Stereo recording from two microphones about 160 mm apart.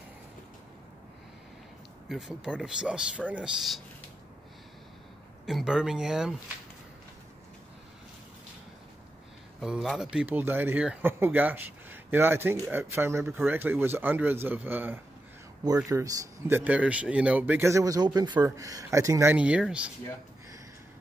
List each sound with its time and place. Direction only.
2.0 s speech: centre (ahead or behind)
5.5 s speech: 5° right (ahead or behind)
9.6 s speech: centre (ahead or behind)
15.6 s speech: 20° right (ahead or behind)
19.3 s speech: 10° right (ahead or behind)